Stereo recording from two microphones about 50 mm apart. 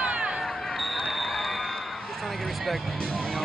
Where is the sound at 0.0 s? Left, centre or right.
Right.